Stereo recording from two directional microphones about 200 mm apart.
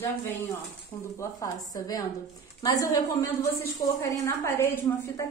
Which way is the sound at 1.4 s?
20° left (ahead or behind).